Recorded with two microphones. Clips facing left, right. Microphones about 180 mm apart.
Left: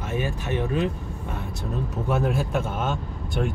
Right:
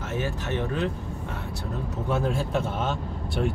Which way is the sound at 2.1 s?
10° left (ahead or behind).